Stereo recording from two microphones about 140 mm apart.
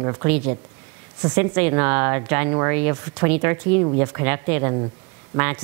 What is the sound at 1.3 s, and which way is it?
Speech, 15° right (ahead or behind).